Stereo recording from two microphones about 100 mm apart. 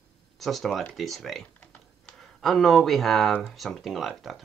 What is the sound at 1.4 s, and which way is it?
Typing, 15° left (ahead or behind).